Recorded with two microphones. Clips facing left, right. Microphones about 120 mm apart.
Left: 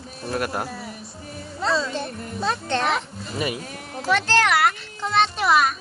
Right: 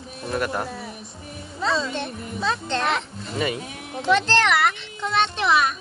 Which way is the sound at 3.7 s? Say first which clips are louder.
Right 1 dB; 35° left (ahead or behind).